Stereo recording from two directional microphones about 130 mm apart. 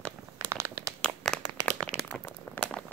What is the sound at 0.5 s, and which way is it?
Crumpling, 20° right (ahead or behind).